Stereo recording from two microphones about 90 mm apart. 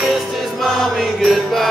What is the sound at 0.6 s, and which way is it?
Mantra, centre (ahead or behind).